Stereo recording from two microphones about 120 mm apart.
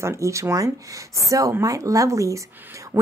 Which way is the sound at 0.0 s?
25° right (ahead or behind).